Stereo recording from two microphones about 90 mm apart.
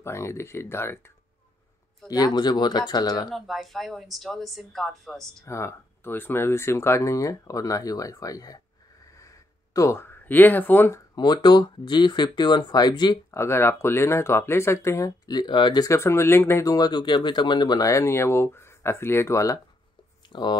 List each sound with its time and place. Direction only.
0.0 s speech: 30° left (ahead or behind)
2.0 s speech: 45° left (ahead or behind)
3.3 s speech: centre (ahead or behind)
5.4 s speech: 30° left (ahead or behind)
9.8 s speech: 30° left (ahead or behind)
11.1 s speech: 55° left (ahead or behind)
13.3 s speech: 30° left (ahead or behind); by 15.8 s 60° left (ahead or behind)
15.8 s speech: 30° left (ahead or behind)
16.6 s speech: 45° left (ahead or behind)
17.8 s speech: 30° left (ahead or behind)
20.3 s speech: 60° left (ahead or behind)